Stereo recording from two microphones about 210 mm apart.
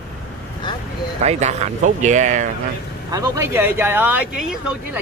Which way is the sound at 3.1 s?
15° right (ahead or behind).